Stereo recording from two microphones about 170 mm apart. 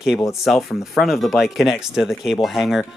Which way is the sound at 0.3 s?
Centre (ahead or behind).